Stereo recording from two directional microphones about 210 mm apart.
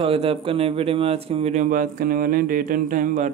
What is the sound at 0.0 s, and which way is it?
Speech, 25° right (ahead or behind).